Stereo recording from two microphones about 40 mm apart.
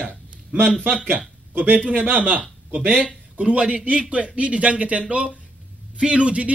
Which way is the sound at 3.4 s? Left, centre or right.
Right.